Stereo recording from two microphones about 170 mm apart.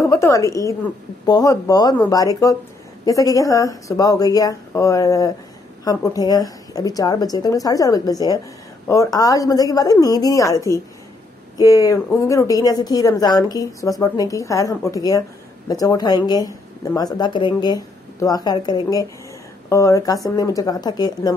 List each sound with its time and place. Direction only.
0.1 s a woman's voice: 20° left (ahead or behind)